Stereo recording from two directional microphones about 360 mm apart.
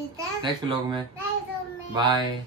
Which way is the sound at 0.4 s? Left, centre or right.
Centre.